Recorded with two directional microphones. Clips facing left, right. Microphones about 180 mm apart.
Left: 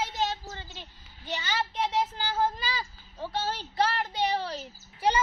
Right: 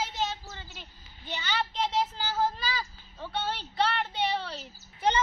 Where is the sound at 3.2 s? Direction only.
10° left (ahead or behind).